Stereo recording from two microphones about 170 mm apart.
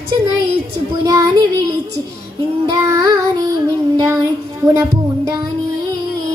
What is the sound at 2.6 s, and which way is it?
Music, 20° right (ahead or behind).